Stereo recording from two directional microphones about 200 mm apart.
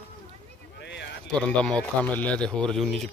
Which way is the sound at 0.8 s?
60° left (ahead or behind).